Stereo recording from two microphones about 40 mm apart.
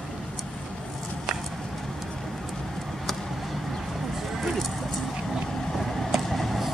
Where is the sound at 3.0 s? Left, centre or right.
Centre.